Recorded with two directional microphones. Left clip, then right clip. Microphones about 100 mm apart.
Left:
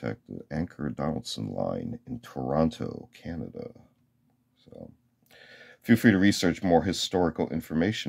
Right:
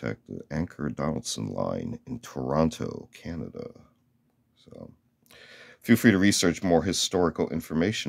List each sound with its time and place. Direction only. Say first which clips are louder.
0.0 s speech: right 1 dB; 35° right (ahead or behind)
4.6 s a sound: even; 20° right (ahead or behind)
5.3 s speech: right 1 dB; 20° right (ahead or behind)